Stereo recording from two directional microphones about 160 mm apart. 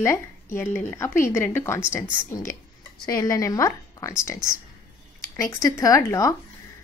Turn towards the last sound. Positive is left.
turn(degrees=20)  # may be behind; listen again after turning